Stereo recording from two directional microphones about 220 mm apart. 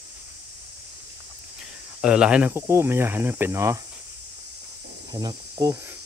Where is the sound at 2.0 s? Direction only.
5° right (ahead or behind).